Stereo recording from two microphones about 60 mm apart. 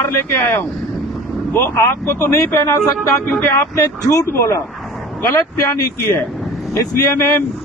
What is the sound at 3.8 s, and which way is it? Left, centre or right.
Speech, left.